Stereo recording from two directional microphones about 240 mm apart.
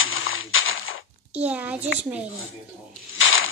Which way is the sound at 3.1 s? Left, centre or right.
Left.